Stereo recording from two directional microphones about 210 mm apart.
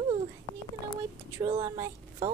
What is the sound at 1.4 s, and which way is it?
Speech, 20° right (ahead or behind).